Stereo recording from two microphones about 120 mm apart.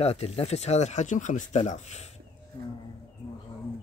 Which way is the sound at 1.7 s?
70° left (ahead or behind).